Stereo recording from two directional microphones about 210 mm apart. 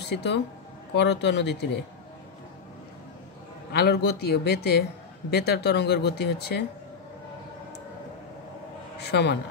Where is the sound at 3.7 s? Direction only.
50° left (ahead or behind).